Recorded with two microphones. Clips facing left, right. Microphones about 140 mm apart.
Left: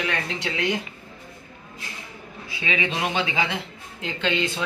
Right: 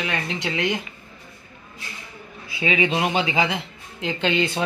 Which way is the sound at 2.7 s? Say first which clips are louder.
Right 4 dB; 15° right (ahead or behind).